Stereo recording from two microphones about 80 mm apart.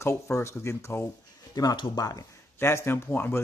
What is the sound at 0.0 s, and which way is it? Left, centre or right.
Speech, left.